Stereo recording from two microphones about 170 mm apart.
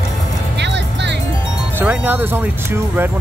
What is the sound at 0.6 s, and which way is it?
Music, 90° right.